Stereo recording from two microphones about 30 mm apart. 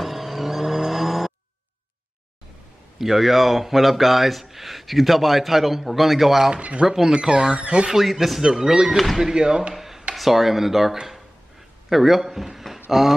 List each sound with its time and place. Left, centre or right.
0.0 s vehicle: centre
3.0 s a man's voice: centre
7.2 s speech: right
7.9 s a man's voice: centre
8.4 s speech: centre
8.9 s a man's voice: centre
9.2 s speech: right
9.8 s a sound: centre
10.1 s speech: centre
12.5 s a sound: centre